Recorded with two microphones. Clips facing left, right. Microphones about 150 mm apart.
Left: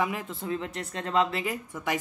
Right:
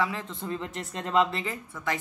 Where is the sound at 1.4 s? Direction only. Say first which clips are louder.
Left 2 dB; 15° left (ahead or behind).